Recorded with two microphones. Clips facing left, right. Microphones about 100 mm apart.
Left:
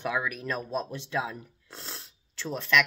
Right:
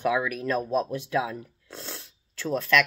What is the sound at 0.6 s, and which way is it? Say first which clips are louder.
Speech: right 6 dB; 10° right (ahead or behind).